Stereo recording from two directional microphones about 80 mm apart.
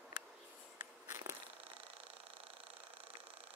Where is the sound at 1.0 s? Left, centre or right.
Right.